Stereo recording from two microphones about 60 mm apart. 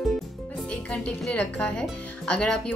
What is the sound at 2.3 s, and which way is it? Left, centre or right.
Speech, centre.